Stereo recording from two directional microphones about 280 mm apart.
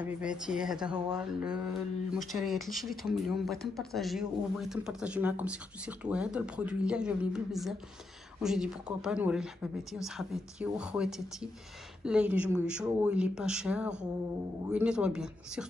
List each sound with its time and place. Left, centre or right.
0.0 s speech: centre